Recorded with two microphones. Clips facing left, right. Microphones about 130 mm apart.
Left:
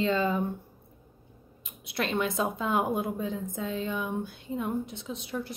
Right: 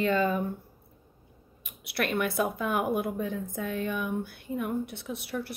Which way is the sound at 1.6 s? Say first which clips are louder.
Right 1 dB; 20° left (ahead or behind).